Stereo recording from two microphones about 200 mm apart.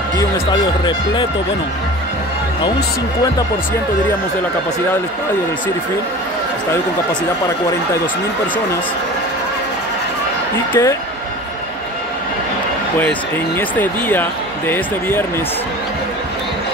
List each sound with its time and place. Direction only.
0.2 s speech: 20° left (ahead or behind)
10.7 s speech: 15° left (ahead or behind)
13.6 s speech: 10° left (ahead or behind)